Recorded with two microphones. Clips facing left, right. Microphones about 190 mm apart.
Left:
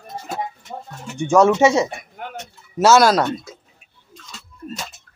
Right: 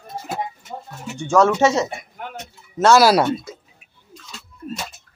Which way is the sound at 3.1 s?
10° right (ahead or behind).